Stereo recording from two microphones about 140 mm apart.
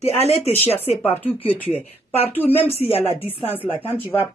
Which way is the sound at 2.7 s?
50° left (ahead or behind).